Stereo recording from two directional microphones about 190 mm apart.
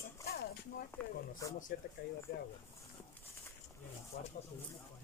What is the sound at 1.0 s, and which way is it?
Speech, 5° left (ahead or behind).